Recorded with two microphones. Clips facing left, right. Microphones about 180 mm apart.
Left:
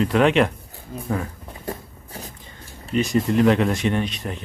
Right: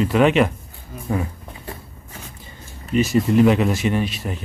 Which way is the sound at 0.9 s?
30° left (ahead or behind).